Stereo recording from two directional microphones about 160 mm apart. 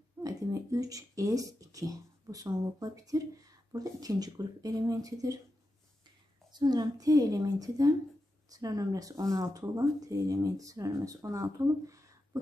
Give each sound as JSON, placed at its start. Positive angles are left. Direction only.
{"t": 0.2, "sound": "speech", "side_deg": -20}
{"t": 6.5, "sound": "speech", "side_deg": -25}